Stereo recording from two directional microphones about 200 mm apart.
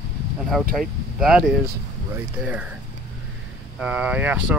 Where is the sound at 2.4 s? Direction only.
5° right (ahead or behind).